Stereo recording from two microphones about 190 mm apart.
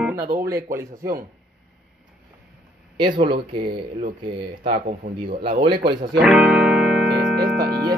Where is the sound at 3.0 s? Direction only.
25° right (ahead or behind).